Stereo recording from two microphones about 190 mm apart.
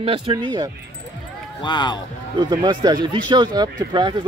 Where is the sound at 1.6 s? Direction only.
25° left (ahead or behind).